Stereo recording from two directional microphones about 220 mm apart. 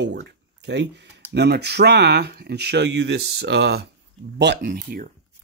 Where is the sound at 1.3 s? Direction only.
50° right (ahead or behind).